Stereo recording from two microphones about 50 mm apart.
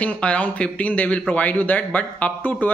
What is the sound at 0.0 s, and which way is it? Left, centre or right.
A man's voice, left.